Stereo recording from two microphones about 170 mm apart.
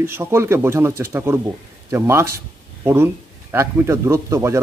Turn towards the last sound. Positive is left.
turn(degrees=-15)  # may be behind; listen again after turning